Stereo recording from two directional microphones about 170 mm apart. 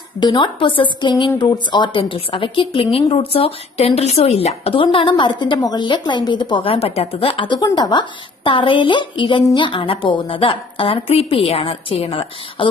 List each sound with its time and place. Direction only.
0.2 s a woman's voice: 30° left (ahead or behind)